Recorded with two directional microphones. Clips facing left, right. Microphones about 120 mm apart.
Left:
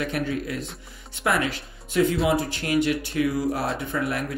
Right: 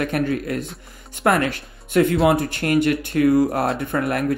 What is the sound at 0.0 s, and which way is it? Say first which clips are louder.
Speech: right 5 dB; 55° right (ahead or behind).